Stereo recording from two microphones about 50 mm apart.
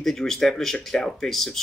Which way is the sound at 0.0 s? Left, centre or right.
Centre.